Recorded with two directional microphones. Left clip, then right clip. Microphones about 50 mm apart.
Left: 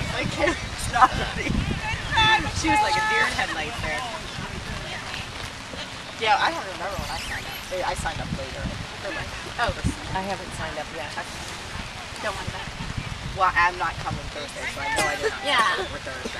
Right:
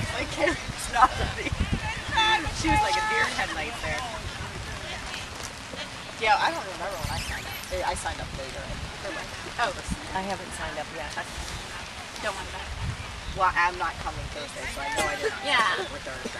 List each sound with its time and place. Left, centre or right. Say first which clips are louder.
0.1 s a sound: left 2 dB; left
1.1 s speech: left 3 dB; left
1.9 s speech: left 4 dB; left
6.2 s speech: left 2 dB; left
9.1 s speech: left 2 dB; centre
13.4 s speech: left 3 dB; left
15.0 s speech: left 3 dB; left
15.4 s speech: left 2 dB; left